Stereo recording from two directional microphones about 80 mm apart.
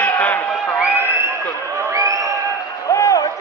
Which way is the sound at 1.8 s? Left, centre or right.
Right.